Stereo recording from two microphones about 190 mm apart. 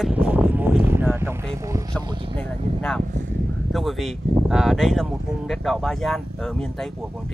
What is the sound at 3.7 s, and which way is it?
Speech, centre (ahead or behind).